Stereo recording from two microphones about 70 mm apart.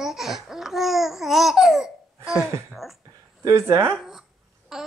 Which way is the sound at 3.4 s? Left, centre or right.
Right.